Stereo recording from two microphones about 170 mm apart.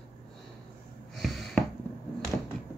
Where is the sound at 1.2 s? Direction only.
Centre (ahead or behind).